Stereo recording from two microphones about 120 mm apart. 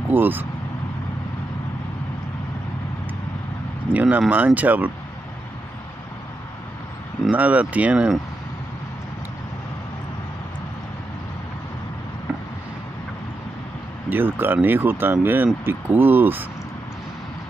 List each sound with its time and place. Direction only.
0.1 s speech: 15° right (ahead or behind)
3.9 s speech: 15° right (ahead or behind)
7.2 s speech: 10° right (ahead or behind)
14.0 s speech: 15° right (ahead or behind)